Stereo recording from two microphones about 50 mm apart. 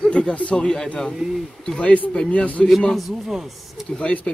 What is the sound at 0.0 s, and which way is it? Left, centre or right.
Speech, centre.